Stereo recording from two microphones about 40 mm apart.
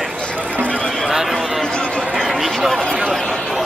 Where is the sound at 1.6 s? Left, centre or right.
Left.